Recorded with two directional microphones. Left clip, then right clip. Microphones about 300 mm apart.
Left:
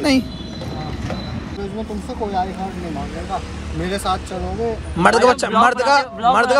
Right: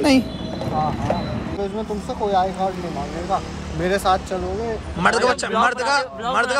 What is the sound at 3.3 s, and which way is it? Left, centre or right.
Speech, centre.